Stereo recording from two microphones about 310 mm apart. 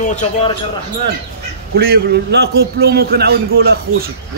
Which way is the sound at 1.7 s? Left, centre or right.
Right.